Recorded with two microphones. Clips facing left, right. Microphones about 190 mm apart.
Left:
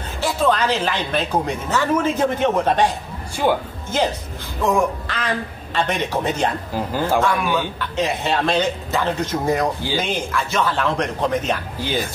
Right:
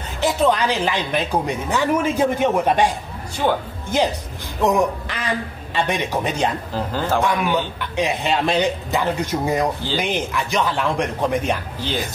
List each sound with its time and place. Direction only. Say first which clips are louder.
0.2 s a woman's voice: right 1 dB; 20° right (ahead or behind)
3.4 s speech: left 1 dB; 10° left (ahead or behind)
4.6 s a woman's voice: right 1 dB; 20° right (ahead or behind)
6.7 s speech: left 1 dB; 10° left (ahead or behind)
7.2 s a woman's voice: right 1 dB; 15° right (ahead or behind)